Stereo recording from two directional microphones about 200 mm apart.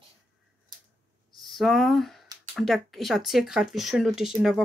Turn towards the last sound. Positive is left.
turn(degrees=0)  # may be behind; listen again after turning